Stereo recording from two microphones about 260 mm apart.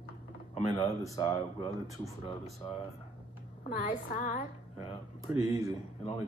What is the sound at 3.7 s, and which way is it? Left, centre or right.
Speech, left.